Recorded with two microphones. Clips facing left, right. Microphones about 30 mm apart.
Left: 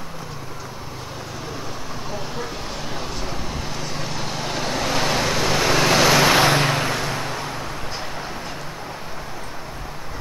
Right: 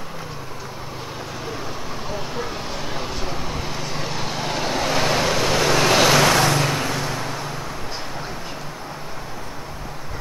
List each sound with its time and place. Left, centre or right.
2.0 s vehicle: centre
6.3 s vehicle: left
6.7 s vehicle: centre